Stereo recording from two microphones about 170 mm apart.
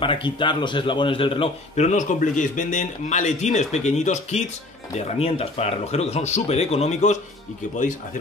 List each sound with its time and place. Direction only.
0.0 s a man's voice: 30° left (ahead or behind)